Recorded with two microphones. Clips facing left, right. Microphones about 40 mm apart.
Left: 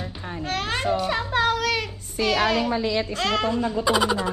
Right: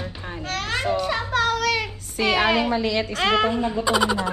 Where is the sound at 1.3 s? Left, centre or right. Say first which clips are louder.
Even; centre.